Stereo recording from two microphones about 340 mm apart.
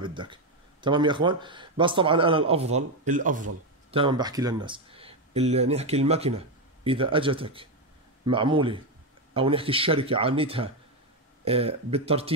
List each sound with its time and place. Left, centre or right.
0.0 s speech: centre